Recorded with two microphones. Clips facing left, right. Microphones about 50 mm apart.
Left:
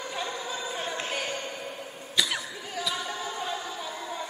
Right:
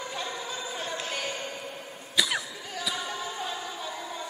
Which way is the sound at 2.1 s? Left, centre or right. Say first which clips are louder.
Right 1 dB; centre.